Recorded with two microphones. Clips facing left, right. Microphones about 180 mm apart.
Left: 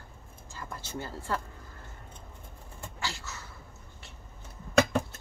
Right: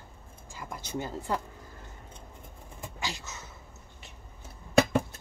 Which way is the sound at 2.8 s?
15° right (ahead or behind).